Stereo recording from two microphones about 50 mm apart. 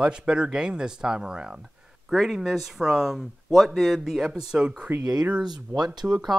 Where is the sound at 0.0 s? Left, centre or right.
Right.